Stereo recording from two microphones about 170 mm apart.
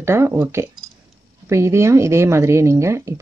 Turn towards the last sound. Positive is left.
turn(degrees=-15)  # may be behind; listen again after turning